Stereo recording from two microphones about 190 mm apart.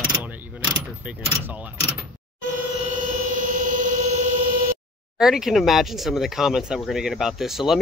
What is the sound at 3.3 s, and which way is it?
Vehicle, 45° right (ahead or behind).